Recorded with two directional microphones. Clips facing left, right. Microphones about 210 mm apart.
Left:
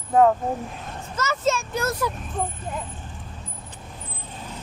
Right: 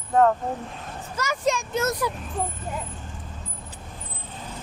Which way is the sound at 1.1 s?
15° right (ahead or behind).